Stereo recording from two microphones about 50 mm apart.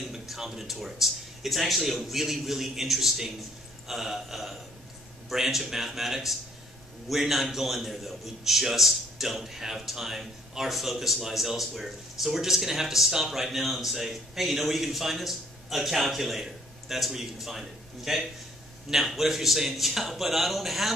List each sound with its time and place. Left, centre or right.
0.0 s a man's voice: centre